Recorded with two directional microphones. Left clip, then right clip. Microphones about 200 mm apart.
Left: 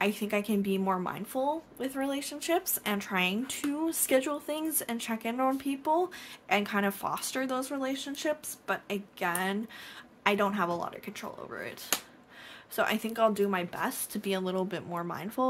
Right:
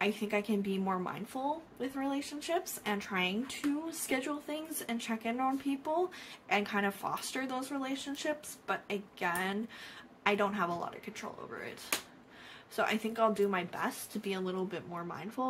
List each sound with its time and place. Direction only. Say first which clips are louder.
0.0 s a woman's voice: left 3 dB; 45° left (ahead or behind)
12.7 s speech: left 3 dB; 40° left (ahead or behind)